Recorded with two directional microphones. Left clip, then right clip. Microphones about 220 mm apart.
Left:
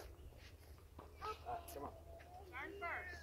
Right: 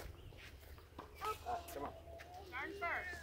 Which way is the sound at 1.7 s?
15° left (ahead or behind).